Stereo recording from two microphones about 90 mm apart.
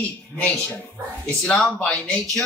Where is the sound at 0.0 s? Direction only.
20° left (ahead or behind).